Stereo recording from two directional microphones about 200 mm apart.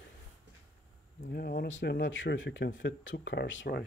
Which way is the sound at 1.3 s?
50° left (ahead or behind).